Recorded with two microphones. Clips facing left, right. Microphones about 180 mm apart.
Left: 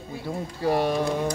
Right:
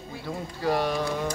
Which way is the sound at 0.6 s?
25° left (ahead or behind).